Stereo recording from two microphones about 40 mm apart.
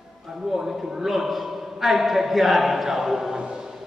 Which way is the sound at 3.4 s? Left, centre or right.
Right.